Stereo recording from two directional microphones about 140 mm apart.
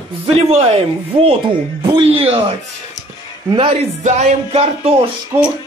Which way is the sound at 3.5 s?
40° right (ahead or behind).